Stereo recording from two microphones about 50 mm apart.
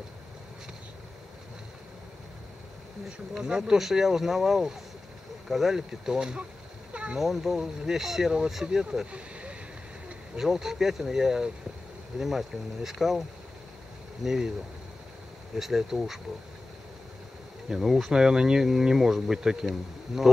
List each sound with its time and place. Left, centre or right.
3.3 s speech: centre
6.9 s a sound: right
7.2 s speech: centre
9.1 s a sound: right
10.4 s speech: centre
14.2 s speech: centre
15.5 s speech: centre
17.6 s speech: centre